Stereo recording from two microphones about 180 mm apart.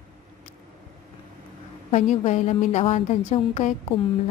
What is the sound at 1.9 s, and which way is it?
A woman's voice, 40° left (ahead or behind).